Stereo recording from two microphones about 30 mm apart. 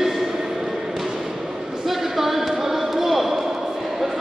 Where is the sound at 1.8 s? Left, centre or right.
Centre.